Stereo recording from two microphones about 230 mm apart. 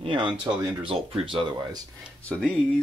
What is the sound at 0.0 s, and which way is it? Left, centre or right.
Speech, right.